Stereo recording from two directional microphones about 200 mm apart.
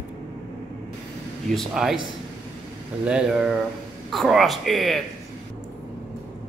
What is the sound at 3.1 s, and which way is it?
Speech, 5° right (ahead or behind).